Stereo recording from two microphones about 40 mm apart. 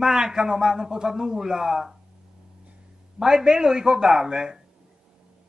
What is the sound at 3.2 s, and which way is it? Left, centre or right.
Speech, centre.